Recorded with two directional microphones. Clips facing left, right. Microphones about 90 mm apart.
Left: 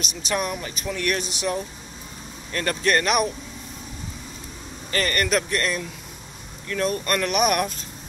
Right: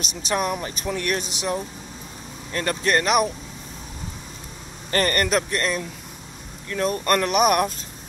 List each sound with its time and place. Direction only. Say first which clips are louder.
0.3 s speech: right 2 dB; 30° right (ahead or behind)
4.9 s speech: right 2 dB; 40° right (ahead or behind)